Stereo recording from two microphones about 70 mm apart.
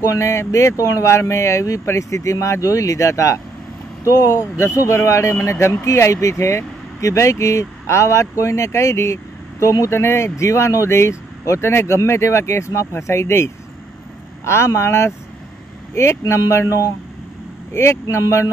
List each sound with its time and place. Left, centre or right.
0.0 s speech: left
18.0 s speech: left